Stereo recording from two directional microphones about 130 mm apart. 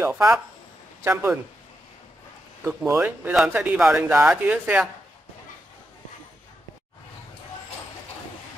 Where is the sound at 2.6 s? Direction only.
20° right (ahead or behind).